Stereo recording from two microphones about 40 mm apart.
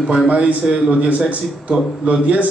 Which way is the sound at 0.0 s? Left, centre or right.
Centre.